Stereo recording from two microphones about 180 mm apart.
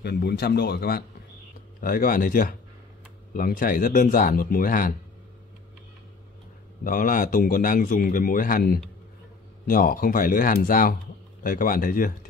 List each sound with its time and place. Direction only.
0.0 s a man's voice: 65° left (ahead or behind)
6.8 s a man's voice: 50° left (ahead or behind)